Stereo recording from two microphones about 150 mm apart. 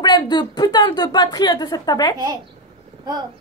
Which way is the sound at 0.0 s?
30° left (ahead or behind).